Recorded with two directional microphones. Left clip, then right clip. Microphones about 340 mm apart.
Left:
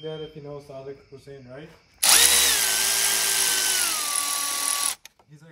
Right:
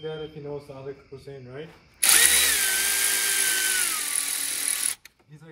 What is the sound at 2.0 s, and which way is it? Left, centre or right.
Drill, left.